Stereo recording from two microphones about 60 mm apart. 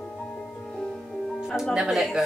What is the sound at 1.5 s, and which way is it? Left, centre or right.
Speech, centre.